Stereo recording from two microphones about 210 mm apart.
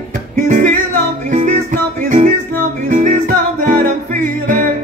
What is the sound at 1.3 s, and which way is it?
Music, 35° right (ahead or behind).